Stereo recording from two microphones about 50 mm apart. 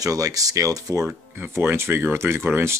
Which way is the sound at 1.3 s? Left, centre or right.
Right.